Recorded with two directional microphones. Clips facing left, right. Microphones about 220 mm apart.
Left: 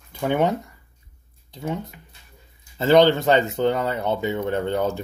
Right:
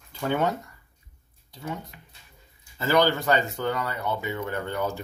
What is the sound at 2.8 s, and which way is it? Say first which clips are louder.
Speech: left 7 dB; 25° left (ahead or behind).